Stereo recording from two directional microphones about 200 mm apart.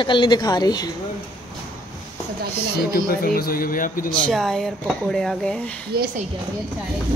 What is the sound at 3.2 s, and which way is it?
Speech, 45° left (ahead or behind).